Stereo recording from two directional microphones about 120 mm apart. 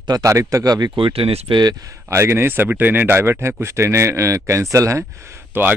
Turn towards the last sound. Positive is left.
turn(degrees=-20)  # may be behind; listen again after turning